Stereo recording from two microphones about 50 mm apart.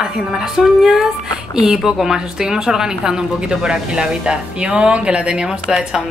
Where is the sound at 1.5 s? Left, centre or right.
Centre.